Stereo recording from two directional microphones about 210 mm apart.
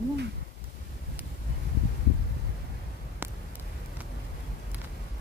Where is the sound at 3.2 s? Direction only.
10° right (ahead or behind).